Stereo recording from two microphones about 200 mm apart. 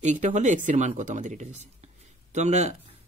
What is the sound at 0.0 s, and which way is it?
Speech, 35° right (ahead or behind).